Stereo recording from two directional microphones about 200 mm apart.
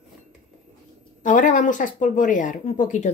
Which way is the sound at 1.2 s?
40° left (ahead or behind).